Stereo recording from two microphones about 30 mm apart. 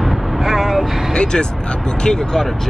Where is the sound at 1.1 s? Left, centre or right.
Left.